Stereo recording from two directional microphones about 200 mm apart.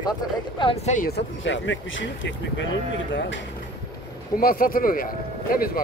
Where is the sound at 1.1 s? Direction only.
65° left (ahead or behind).